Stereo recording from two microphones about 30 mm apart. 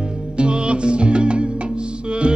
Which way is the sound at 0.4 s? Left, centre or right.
Right.